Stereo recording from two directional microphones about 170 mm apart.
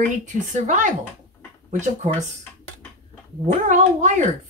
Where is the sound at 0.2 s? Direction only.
45° right (ahead or behind).